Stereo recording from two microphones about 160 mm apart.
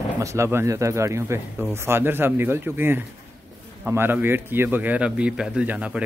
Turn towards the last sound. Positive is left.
turn(degrees=-10)  # may be behind; listen again after turning